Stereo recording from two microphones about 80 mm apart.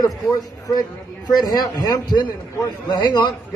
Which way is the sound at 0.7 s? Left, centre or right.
Left.